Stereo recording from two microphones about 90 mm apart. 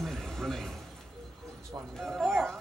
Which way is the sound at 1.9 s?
Centre (ahead or behind).